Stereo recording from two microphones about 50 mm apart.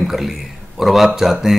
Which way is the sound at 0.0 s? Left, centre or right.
Centre.